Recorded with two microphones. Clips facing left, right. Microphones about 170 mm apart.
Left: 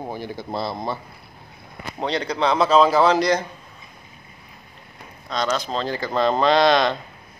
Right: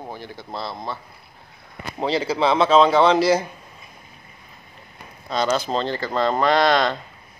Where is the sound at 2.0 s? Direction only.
5° right (ahead or behind).